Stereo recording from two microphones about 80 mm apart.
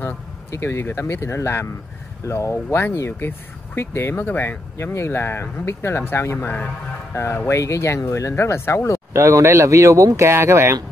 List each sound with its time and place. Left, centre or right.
0.0 s speech: left
7.2 s speech: left
9.1 s speech: right